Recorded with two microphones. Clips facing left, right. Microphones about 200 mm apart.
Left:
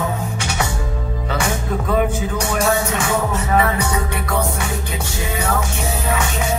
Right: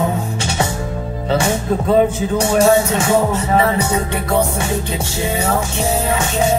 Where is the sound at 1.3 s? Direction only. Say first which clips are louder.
Right 6 dB; 30° right (ahead or behind).